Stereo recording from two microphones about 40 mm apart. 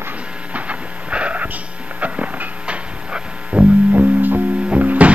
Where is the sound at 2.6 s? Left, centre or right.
Right.